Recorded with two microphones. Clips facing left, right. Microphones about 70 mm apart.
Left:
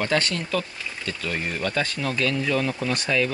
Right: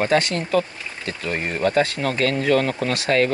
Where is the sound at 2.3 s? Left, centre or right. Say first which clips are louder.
Right 5 dB; right.